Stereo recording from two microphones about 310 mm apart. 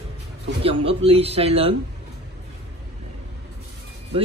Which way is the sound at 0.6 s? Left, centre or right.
Centre.